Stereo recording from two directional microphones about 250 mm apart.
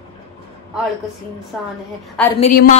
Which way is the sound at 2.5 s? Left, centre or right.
Left.